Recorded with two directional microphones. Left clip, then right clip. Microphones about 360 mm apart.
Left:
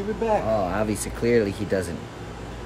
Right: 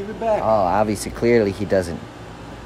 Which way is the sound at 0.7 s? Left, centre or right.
Centre.